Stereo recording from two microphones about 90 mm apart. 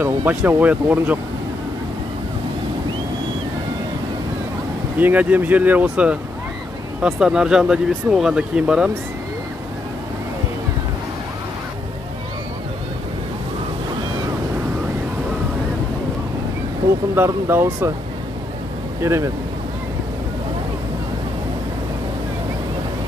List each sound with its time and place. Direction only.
0.0 s speech: 20° right (ahead or behind)
4.9 s speech: 20° right (ahead or behind)
17.1 s speech: 25° right (ahead or behind)
18.9 s speech: 30° right (ahead or behind)